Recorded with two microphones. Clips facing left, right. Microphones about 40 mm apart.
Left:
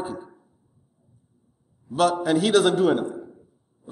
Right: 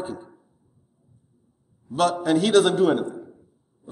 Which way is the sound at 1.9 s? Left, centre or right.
Centre.